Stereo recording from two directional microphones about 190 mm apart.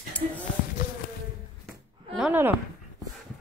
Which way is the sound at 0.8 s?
55° left (ahead or behind).